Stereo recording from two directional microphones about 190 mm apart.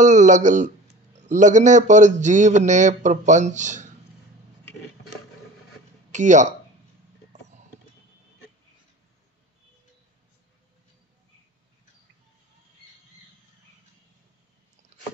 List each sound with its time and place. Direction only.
0.0 s speech: 40° right (ahead or behind)
6.1 s speech: 40° right (ahead or behind)